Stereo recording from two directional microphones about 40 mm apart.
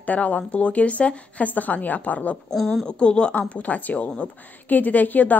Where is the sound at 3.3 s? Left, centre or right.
Left.